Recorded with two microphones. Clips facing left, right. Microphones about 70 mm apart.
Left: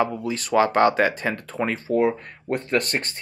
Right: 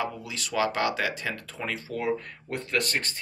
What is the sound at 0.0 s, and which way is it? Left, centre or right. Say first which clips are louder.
Speech: left 8 dB; left.